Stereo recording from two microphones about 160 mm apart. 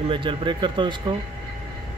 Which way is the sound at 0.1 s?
30° right (ahead or behind).